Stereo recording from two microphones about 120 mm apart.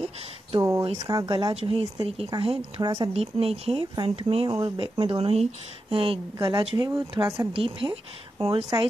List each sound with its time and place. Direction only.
0.6 s a sound: 25° right (ahead or behind)
0.9 s speech: 35° right (ahead or behind); by 2.6 s 50° right (ahead or behind)
2.8 s speech: 35° right (ahead or behind)
3.1 s speech: 55° right (ahead or behind)
7.5 s speech: 50° right (ahead or behind)